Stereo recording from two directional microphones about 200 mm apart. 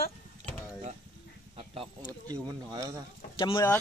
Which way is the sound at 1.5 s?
30° right (ahead or behind).